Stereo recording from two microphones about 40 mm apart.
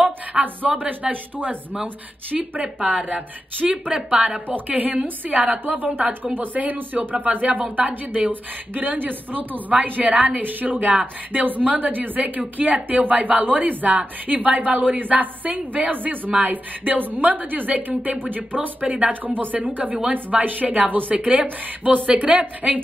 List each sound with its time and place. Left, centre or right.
0.0 s a sound: right
1.1 s a woman's voice: right
2.9 s a woman's voice: right
4.1 s a woman's voice: right
4.5 s a woman's voice: right
18.9 s a woman's voice: right
19.2 s a woman's voice: right
22.1 s a woman's voice: right